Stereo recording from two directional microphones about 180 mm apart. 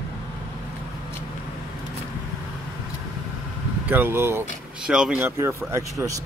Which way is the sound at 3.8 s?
10° right (ahead or behind).